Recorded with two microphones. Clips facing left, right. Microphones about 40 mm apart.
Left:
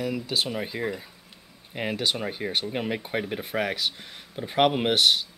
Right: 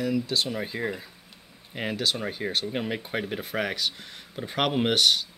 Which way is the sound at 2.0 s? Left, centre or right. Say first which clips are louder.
Right 1 dB; centre.